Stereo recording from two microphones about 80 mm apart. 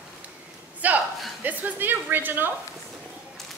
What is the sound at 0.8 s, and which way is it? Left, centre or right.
A woman's voice, centre.